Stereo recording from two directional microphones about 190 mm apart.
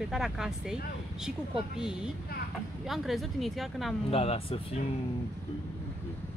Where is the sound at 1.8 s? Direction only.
5° right (ahead or behind).